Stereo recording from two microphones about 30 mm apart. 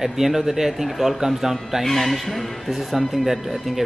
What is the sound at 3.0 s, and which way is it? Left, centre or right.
Speech, centre.